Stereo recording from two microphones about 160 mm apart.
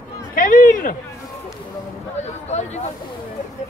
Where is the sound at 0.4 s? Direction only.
55° left (ahead or behind).